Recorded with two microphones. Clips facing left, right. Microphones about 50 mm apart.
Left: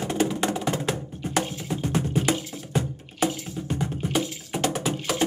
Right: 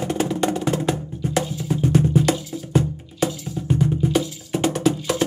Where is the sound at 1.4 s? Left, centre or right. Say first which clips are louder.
Even; left.